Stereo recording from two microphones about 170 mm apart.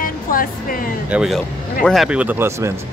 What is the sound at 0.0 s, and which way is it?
Music, 55° left (ahead or behind).